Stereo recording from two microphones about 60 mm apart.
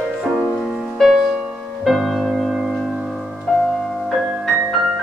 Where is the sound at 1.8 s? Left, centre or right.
Centre.